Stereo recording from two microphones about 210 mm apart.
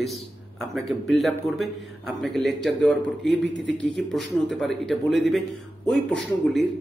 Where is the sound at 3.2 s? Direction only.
60° left (ahead or behind).